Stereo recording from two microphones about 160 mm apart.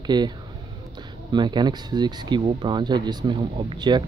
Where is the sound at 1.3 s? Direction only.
25° right (ahead or behind).